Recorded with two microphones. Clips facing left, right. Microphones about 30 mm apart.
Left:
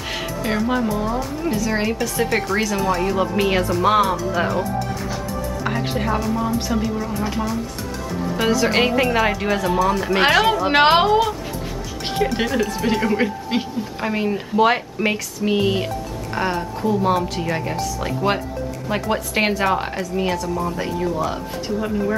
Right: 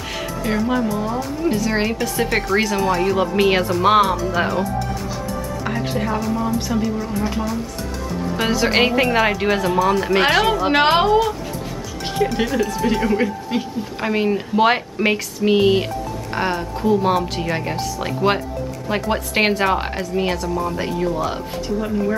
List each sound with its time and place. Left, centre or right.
0.1 s music: centre
0.6 s speech: centre
1.6 s a woman's voice: centre
5.6 s speech: centre
8.5 s a woman's voice: centre
10.2 s a woman's voice: centre
12.4 s speech: centre
13.5 s a woman's voice: left
14.0 s a woman's voice: centre
21.7 s speech: centre